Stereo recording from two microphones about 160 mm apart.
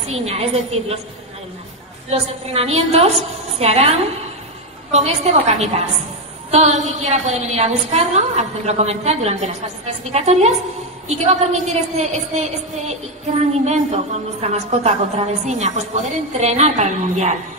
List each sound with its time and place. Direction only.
0.0 s a woman's voice: 40° right (ahead or behind)
2.0 s a woman's voice: 40° right (ahead or behind)
4.9 s a woman's voice: 45° right (ahead or behind)